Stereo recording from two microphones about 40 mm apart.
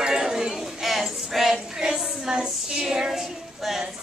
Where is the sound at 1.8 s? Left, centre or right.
Centre.